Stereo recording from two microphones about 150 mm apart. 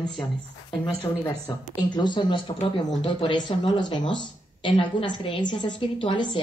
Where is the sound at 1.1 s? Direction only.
20° left (ahead or behind).